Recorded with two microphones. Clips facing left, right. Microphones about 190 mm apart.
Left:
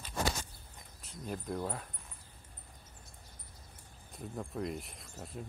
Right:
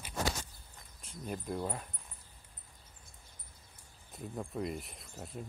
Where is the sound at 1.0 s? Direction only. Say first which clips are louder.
Even; centre (ahead or behind).